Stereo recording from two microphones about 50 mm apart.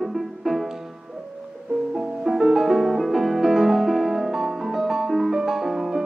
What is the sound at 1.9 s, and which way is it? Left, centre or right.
Music, centre.